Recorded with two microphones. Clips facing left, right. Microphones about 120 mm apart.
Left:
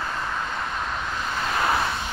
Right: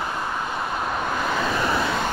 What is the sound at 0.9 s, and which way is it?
Vehicle, 55° right (ahead or behind).